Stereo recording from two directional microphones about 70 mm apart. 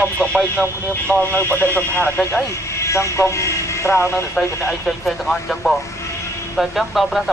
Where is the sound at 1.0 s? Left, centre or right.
Left.